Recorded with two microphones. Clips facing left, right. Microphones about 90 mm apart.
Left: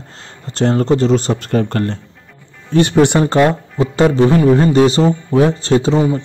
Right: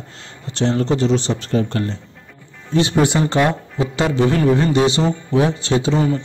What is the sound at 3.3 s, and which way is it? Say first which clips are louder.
A man's voice: left 5 dB; 40° left (ahead or behind).